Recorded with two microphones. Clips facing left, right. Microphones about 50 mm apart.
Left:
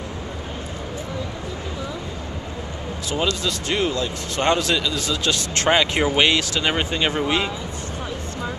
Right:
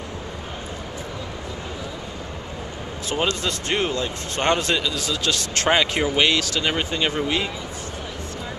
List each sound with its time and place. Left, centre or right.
3.1 s speech: right
4.4 s a man's voice: centre
4.9 s speech: centre
5.9 s speech: centre